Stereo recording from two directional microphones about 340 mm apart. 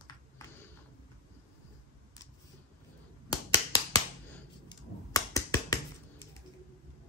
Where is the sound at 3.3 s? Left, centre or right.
Centre.